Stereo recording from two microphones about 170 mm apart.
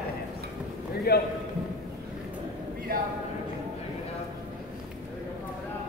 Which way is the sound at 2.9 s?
60° right (ahead or behind).